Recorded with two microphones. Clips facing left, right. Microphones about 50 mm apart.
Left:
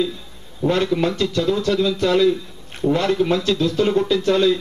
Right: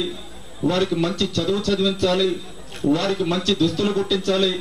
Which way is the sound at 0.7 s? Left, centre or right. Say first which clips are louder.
Left 2 dB; left.